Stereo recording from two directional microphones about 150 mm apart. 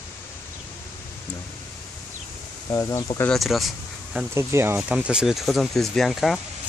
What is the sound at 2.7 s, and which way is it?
Speech, 25° left (ahead or behind).